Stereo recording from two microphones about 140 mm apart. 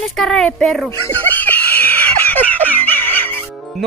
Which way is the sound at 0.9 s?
15° left (ahead or behind).